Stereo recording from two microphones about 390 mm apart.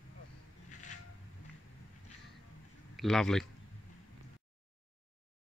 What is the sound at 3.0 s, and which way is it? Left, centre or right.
Speech, centre.